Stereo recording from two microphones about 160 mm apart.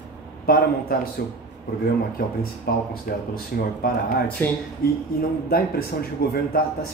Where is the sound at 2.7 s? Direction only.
80° left.